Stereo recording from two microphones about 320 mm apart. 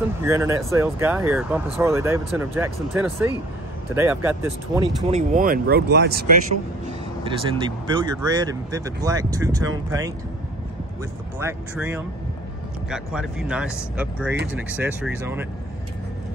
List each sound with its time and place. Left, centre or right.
0.2 s speech: centre
5.1 s speech: right
7.2 s speech: centre
11.3 s speech: centre